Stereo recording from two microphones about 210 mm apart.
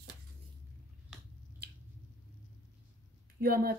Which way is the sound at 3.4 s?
45° right (ahead or behind).